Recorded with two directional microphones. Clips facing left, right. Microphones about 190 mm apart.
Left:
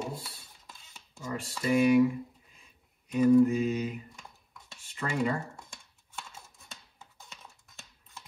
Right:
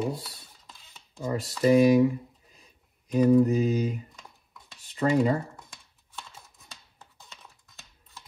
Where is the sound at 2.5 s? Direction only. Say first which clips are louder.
Right 3 dB; 35° right (ahead or behind).